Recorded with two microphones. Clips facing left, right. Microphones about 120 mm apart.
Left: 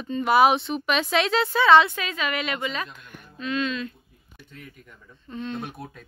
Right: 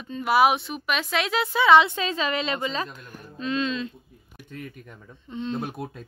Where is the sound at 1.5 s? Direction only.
20° right (ahead or behind).